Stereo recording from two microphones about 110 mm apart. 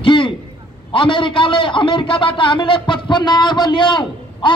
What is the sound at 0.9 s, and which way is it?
A man's voice, 50° left (ahead or behind).